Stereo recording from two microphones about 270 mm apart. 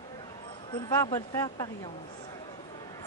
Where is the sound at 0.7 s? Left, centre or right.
Centre.